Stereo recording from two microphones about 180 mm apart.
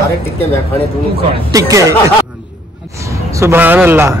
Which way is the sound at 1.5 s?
20° right (ahead or behind).